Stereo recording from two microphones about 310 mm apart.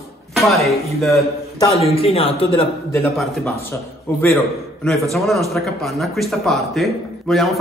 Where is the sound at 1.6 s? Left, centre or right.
Centre.